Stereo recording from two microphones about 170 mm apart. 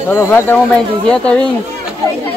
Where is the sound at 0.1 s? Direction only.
10° left (ahead or behind).